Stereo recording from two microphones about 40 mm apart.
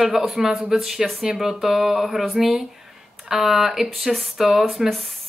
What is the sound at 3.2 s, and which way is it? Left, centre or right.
Speech, centre.